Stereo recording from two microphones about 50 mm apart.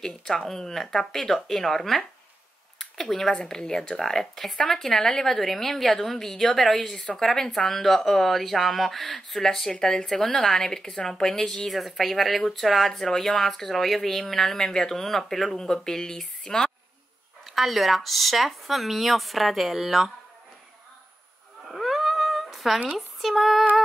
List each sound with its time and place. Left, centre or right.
0.0 s speech: centre
7.0 s speech: centre
7.2 s speech: centre
17.5 s speech: centre
21.6 s a sound: centre
22.9 s speech: centre